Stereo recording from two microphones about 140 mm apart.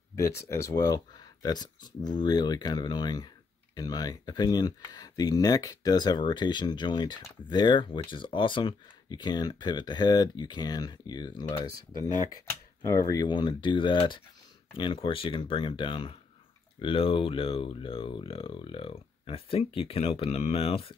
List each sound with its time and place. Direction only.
0.1 s speech: 20° left (ahead or behind); by 20.9 s 45° left (ahead or behind)